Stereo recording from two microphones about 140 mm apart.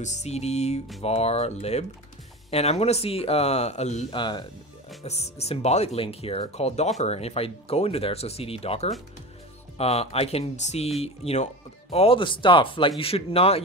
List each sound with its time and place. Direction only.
0.0 s speech: 55° left (ahead or behind)
4.1 s speech: 35° left (ahead or behind)
5.0 s speech: 50° left (ahead or behind)